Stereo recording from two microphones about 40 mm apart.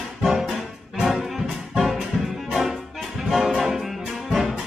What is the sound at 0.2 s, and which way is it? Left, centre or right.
Music, centre.